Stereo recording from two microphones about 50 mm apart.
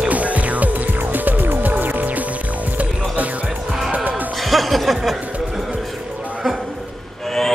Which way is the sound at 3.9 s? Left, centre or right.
Right.